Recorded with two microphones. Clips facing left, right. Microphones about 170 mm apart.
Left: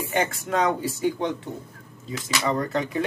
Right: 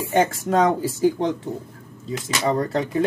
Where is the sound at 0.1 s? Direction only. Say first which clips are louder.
Right 6 dB; 35° right (ahead or behind).